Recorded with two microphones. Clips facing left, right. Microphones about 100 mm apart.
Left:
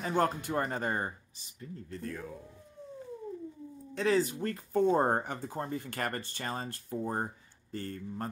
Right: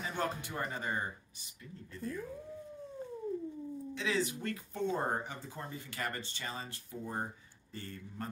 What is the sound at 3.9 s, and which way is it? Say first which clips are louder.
Speech: left 7 dB; 45° left (ahead or behind).